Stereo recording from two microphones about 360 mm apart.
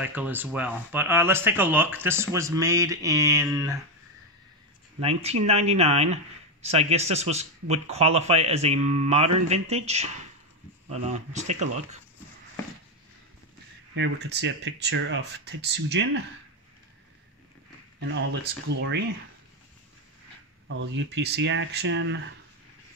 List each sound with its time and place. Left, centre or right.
0.0 s speech: centre
5.0 s speech: centre
13.9 s speech: right
18.0 s speech: right
20.6 s speech: right